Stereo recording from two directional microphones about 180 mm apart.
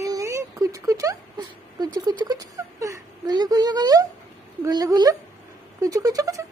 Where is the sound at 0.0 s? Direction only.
20° right (ahead or behind).